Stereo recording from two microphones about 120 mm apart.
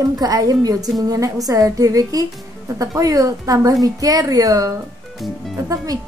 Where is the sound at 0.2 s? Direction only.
30° right (ahead or behind).